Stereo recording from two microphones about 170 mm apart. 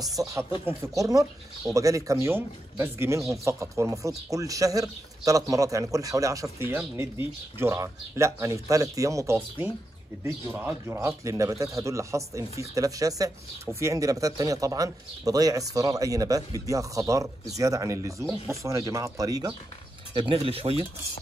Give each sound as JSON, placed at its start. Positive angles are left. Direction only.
{"t": 0.0, "sound": "a man's voice", "side_deg": -20}